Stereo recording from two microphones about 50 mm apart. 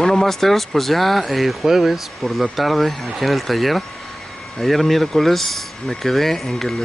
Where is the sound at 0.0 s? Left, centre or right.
Centre.